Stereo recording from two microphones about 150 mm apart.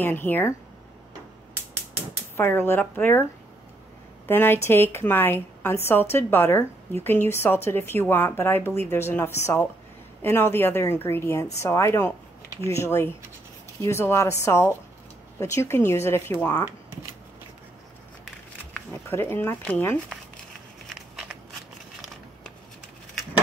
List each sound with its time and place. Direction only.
0.0 s a woman's voice: 15° left (ahead or behind)
2.3 s a woman's voice: 15° left (ahead or behind)
4.3 s a woman's voice: 15° left (ahead or behind)
19.0 s a woman's voice: 15° left (ahead or behind)
20.8 s a sound: centre (ahead or behind)